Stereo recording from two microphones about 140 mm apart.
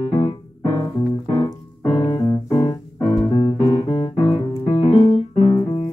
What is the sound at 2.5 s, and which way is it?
Music, 30° left (ahead or behind).